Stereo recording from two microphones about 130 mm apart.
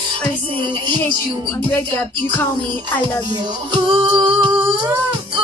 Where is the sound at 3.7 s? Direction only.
40° right (ahead or behind).